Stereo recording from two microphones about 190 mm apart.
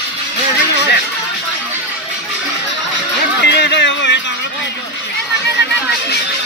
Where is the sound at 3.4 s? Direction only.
65° left (ahead or behind).